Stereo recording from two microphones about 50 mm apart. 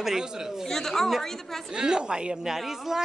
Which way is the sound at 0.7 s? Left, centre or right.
Centre.